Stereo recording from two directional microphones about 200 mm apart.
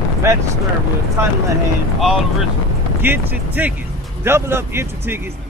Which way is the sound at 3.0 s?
10° right (ahead or behind).